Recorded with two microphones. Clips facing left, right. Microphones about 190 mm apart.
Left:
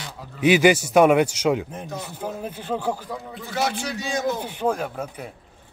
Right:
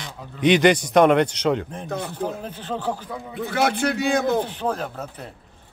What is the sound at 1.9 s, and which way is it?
Speech, 60° right (ahead or behind).